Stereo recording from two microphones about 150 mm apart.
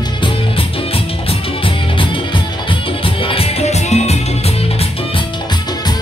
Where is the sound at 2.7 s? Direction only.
35° left (ahead or behind).